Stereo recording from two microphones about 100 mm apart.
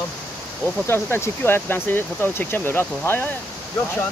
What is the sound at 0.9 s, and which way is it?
Speech, 25° left (ahead or behind).